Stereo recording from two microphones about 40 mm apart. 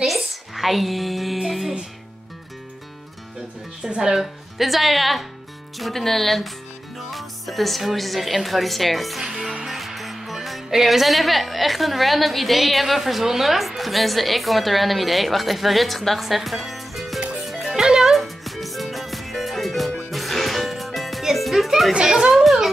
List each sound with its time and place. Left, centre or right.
0.0 s a sound: centre
3.9 s speech: centre
4.6 s a woman's voice: centre
9.7 s music: centre
10.7 s a woman's voice: centre
17.5 s music: centre
17.7 s music: centre
18.1 s music: centre
21.9 s speech: centre
22.3 s a child's voice: centre